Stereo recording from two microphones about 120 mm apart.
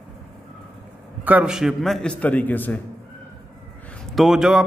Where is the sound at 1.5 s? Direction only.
Centre (ahead or behind).